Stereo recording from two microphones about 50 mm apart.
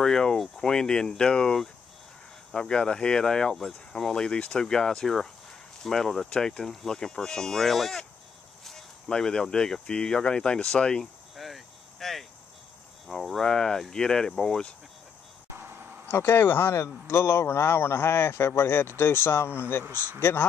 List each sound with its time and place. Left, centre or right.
0.0 s speech: centre
11.3 s cricket: centre
13.1 s speech: centre
15.5 s a sound: right
16.1 s a man's voice: left
16.8 s a man's voice: left